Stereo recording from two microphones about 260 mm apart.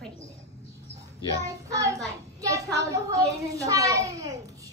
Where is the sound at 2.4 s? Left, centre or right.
Centre.